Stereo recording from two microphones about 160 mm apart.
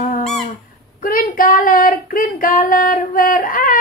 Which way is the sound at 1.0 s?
60° left (ahead or behind).